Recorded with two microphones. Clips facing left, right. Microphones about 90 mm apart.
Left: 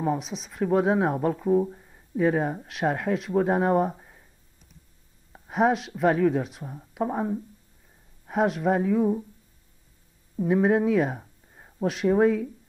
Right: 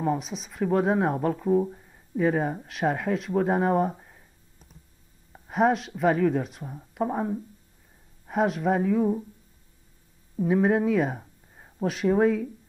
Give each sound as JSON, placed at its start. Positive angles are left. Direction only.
{"t": 0.0, "sound": "speech", "side_deg": 0}
{"t": 5.3, "sound": "speech", "side_deg": 0}
{"t": 10.3, "sound": "speech", "side_deg": 0}